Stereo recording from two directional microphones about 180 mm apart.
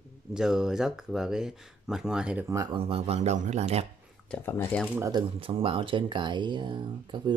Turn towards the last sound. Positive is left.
turn(degrees=-25)  # may be behind; listen again after turning